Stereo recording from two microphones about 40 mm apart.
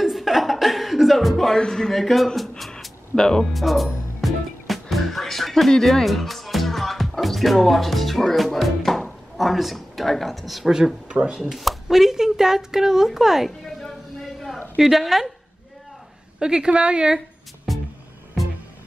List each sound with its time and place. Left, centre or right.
0.0 s chuckle: centre
1.5 s speech: centre
3.5 s music: centre
9.4 s speech: centre
11.1 s speech: right
11.5 s a woman's voice: centre
13.5 s a sound: centre
14.8 s speech: centre
16.3 s a woman's voice: right
17.7 s music: centre